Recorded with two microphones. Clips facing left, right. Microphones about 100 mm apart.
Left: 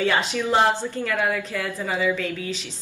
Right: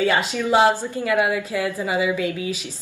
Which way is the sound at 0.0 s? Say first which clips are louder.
Right 2 dB; 15° right (ahead or behind).